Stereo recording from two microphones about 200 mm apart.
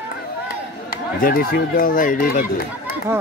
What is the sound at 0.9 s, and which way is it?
Speech, 45° left (ahead or behind).